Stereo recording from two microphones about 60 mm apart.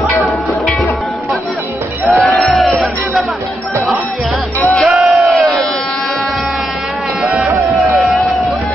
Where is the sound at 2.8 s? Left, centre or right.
Centre.